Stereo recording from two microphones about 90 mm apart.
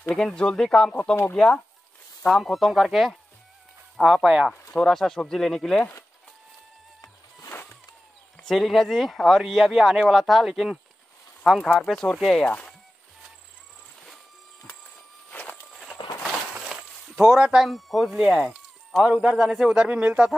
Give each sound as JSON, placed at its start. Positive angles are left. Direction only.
{"t": 0.1, "sound": "speech", "side_deg": 5}
{"t": 4.8, "sound": "speech", "side_deg": 5}
{"t": 7.0, "sound": "music", "side_deg": 30}
{"t": 8.4, "sound": "speech", "side_deg": 0}
{"t": 12.4, "sound": "speech", "side_deg": 15}
{"t": 15.3, "sound": "walk", "side_deg": 20}
{"t": 15.7, "sound": "a sound", "side_deg": 0}
{"t": 16.2, "sound": "a sound", "side_deg": -10}
{"t": 19.0, "sound": "a man's voice", "side_deg": -10}